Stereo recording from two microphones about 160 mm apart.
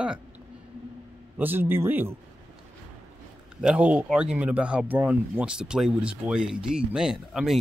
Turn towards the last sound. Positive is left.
turn(degrees=-5)  # may be behind; listen again after turning